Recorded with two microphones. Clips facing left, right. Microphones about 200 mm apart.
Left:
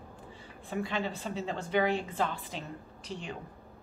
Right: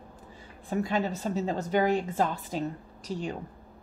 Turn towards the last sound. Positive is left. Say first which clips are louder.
# right 6 dB
turn(degrees=-40)  # may be behind; listen again after turning